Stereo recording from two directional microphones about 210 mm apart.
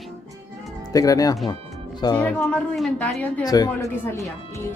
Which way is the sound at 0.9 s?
15° left (ahead or behind).